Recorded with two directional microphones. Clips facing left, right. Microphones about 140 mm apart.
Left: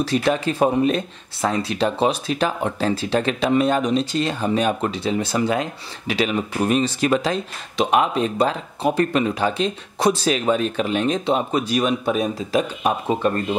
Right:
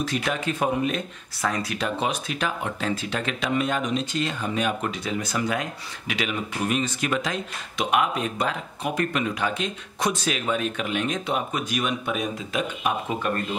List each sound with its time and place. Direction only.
0.0 s speech: 35° left (ahead or behind)